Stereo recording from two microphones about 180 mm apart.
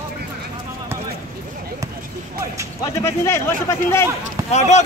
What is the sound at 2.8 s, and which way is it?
A man's voice, 15° left (ahead or behind).